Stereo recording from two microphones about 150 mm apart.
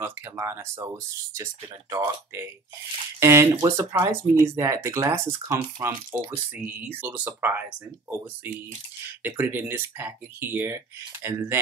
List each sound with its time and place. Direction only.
0.0 s speech: 15° right (ahead or behind)